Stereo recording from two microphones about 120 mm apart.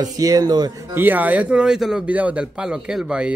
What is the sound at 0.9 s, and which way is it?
Speech, 15° right (ahead or behind).